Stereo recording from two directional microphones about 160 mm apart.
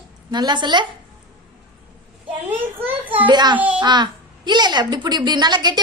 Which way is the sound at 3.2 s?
30° right (ahead or behind).